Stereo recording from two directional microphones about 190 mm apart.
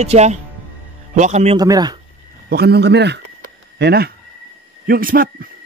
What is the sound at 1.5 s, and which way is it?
Speech, 20° right (ahead or behind).